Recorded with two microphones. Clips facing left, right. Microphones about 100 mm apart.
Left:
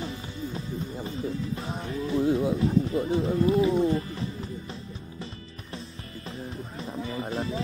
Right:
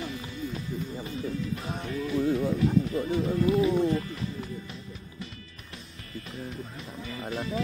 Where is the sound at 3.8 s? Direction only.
30° left (ahead or behind).